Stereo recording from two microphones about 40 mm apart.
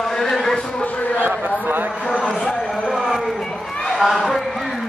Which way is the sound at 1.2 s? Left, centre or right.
Right.